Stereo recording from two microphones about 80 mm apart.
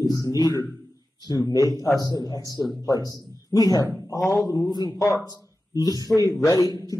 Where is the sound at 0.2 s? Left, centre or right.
Left.